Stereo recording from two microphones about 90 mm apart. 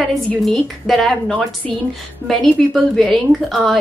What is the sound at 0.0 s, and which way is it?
A woman's voice, centre (ahead or behind).